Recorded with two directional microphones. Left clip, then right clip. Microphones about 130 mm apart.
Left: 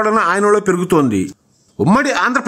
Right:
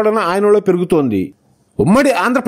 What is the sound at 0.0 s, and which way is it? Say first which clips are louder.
Speech: even; 25° right (ahead or behind).